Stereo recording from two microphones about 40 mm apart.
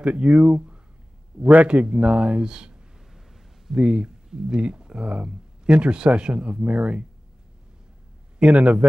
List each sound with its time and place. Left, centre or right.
0.0 s a man's voice: right
1.9 s speech: right
3.1 s a sound: centre
3.7 s speech: right
8.4 s speech: right